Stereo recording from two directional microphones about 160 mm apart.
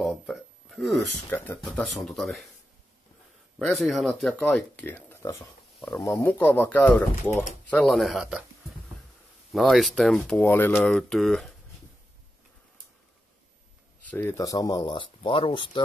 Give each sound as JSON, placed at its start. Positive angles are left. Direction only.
{"t": 0.0, "sound": "a sound", "side_deg": 0}
{"t": 1.3, "sound": "speech", "side_deg": 10}
{"t": 3.5, "sound": "speech", "side_deg": 0}
{"t": 9.5, "sound": "speech", "side_deg": 0}
{"t": 10.4, "sound": "speech", "side_deg": 15}
{"t": 14.1, "sound": "speech", "side_deg": 15}